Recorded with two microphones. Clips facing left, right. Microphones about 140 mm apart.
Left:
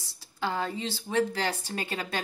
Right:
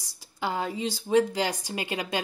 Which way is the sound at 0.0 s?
15° right (ahead or behind).